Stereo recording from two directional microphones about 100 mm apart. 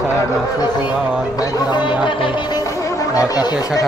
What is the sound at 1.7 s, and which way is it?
Speech, 50° left (ahead or behind).